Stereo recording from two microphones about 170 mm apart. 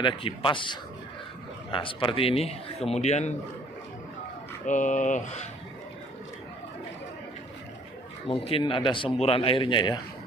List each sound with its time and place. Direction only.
0.0 s a man's voice: 30° left (ahead or behind)
4.6 s speech: 45° left (ahead or behind)
8.3 s a man's voice: 30° left (ahead or behind)